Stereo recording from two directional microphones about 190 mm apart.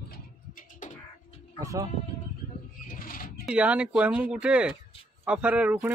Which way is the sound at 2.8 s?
45° left (ahead or behind).